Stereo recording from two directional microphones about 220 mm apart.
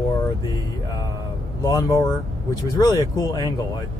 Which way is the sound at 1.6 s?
15° left (ahead or behind).